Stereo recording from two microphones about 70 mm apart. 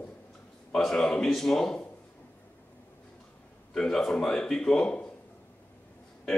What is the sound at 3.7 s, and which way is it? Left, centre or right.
A man's voice, centre.